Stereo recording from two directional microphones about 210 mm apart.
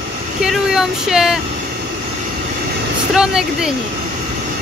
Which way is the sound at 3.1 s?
5° right (ahead or behind).